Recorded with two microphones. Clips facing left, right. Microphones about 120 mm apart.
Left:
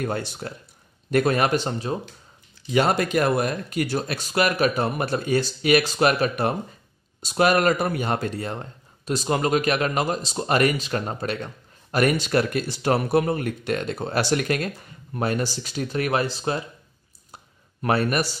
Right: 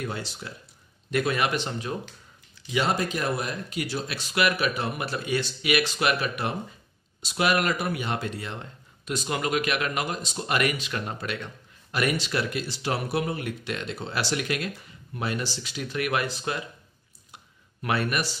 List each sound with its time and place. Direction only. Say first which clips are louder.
0.0 s speech: left 6 dB; 50° left (ahead or behind); by 2.0 s 35° left (ahead or behind)
2.7 s speech: left 6 dB; 55° left (ahead or behind); by 16.6 s 30° left (ahead or behind)
17.8 s speech: left 5 dB; 40° left (ahead or behind)